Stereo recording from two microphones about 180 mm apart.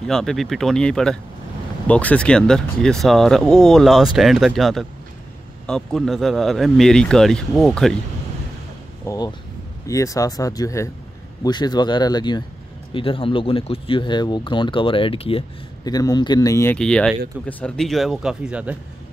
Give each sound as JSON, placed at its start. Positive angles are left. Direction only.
{"t": 0.0, "sound": "speech", "side_deg": 0}
{"t": 9.0, "sound": "a sound", "side_deg": 20}
{"t": 9.8, "sound": "speech", "side_deg": 20}
{"t": 16.7, "sound": "speech", "side_deg": 5}